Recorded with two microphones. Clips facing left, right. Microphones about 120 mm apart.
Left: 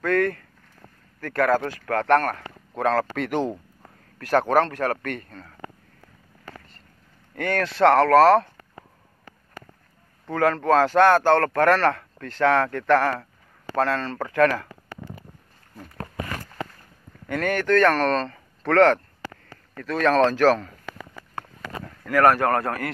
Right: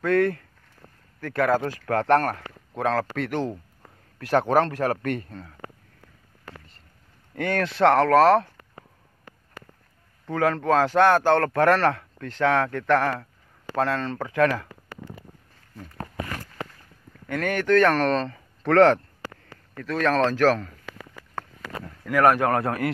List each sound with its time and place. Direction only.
0.0 s a man's voice: 10° right (ahead or behind)
1.9 s speech: 20° right (ahead or behind)
2.7 s speech: 5° right (ahead or behind)
3.3 s speech: 10° left (ahead or behind)
4.2 s a man's voice: 15° right (ahead or behind)
7.3 s a man's voice: 15° right (ahead or behind)
10.2 s a man's voice: 5° right (ahead or behind)
17.3 s speech: centre (ahead or behind)
19.8 s speech: centre (ahead or behind)
22.0 s a man's voice: 10° right (ahead or behind)